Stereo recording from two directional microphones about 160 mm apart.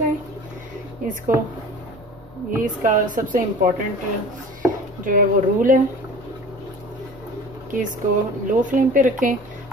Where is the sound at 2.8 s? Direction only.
55° right (ahead or behind).